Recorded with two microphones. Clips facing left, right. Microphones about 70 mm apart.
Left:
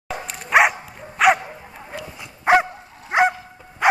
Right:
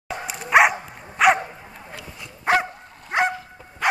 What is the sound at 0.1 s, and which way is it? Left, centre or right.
Dog, centre.